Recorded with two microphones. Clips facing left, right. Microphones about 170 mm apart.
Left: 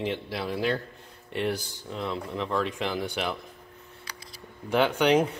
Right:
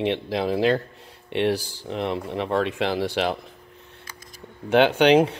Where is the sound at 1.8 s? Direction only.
70° right (ahead or behind); by 3.3 s 85° right.